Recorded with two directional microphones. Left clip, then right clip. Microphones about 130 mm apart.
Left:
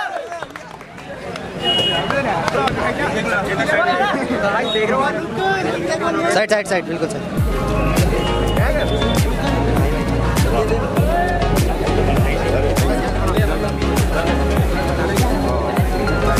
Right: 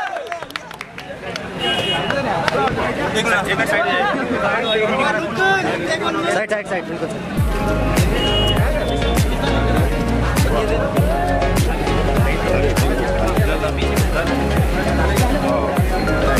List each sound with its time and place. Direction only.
3.2 s speech: 20° right (ahead or behind)
5.5 s a sound: 5° right (ahead or behind)
6.2 s speech: 15° left (ahead or behind)